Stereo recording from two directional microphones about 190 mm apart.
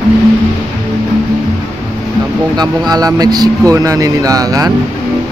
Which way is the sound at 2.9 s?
20° right (ahead or behind).